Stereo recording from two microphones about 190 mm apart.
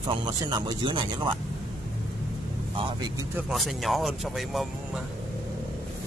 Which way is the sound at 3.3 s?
Centre (ahead or behind).